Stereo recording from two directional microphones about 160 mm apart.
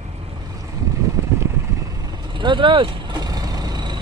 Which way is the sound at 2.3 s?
30° right (ahead or behind).